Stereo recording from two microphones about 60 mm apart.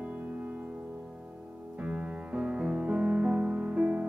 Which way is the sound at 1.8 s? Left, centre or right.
Right.